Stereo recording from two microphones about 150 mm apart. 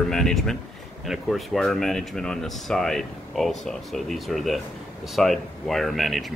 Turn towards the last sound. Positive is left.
turn(degrees=0)  # may be behind; listen again after turning